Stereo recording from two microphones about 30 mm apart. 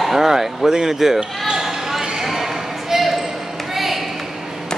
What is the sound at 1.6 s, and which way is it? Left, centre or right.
Basketball bounce, centre.